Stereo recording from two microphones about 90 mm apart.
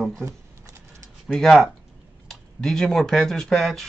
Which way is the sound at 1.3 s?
5° left (ahead or behind).